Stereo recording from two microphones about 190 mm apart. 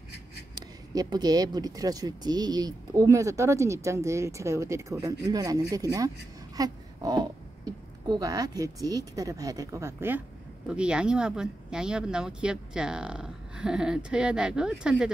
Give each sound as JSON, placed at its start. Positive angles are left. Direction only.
{"t": 0.6, "sound": "speech", "side_deg": -20}